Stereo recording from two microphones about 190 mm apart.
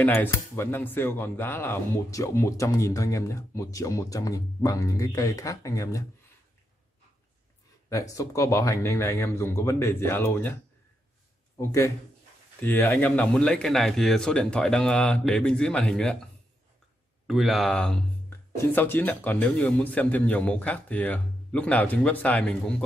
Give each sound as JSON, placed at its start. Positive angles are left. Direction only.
{"t": 0.0, "sound": "speech", "side_deg": 10}
{"t": 7.9, "sound": "speech", "side_deg": 15}
{"t": 11.5, "sound": "a man's voice", "side_deg": 15}
{"t": 17.3, "sound": "a man's voice", "side_deg": 0}